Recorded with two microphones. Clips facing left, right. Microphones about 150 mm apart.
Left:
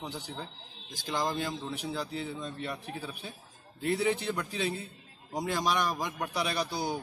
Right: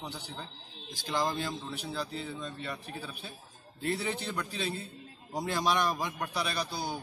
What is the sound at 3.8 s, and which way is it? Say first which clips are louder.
A man's voice: left 4 dB; 10° left (ahead or behind).